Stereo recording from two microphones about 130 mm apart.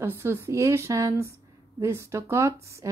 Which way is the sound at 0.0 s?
20° right (ahead or behind).